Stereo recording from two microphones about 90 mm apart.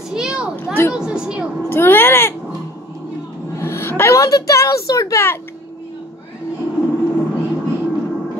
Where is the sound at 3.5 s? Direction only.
30° left (ahead or behind).